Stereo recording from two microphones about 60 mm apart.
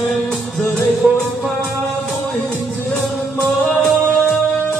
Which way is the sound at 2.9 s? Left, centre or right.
Centre.